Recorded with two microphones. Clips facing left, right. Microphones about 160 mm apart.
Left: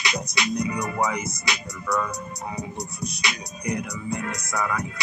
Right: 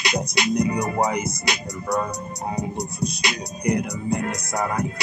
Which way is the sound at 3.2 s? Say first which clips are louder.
Right 4 dB; 35° right (ahead or behind).